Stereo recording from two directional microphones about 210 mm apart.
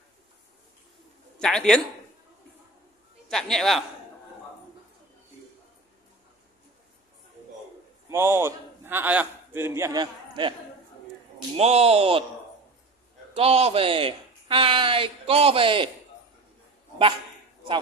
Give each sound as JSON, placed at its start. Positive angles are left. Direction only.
{"t": 1.4, "sound": "a man's voice", "side_deg": 5}
{"t": 3.3, "sound": "a man's voice", "side_deg": 0}
{"t": 8.1, "sound": "a man's voice", "side_deg": -10}
{"t": 11.5, "sound": "speech", "side_deg": -30}
{"t": 13.3, "sound": "speech", "side_deg": -30}